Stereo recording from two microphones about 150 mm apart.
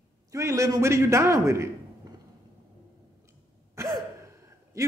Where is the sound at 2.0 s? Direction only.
25° right (ahead or behind).